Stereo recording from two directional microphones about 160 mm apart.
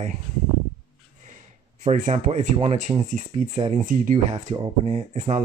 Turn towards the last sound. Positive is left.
turn(degrees=-45)  # may be behind; listen again after turning